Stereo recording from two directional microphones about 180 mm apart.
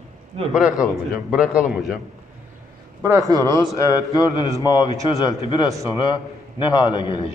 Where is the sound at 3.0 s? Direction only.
20° right (ahead or behind).